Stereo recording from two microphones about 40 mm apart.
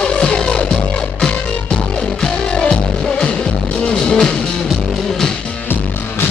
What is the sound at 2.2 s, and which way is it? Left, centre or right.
Music, centre.